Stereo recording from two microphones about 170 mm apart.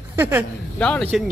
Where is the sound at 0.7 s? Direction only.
5° left (ahead or behind).